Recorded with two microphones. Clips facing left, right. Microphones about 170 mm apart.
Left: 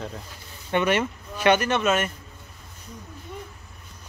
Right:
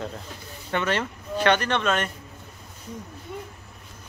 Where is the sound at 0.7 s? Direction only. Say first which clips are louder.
Left 3 dB; 10° left (ahead or behind).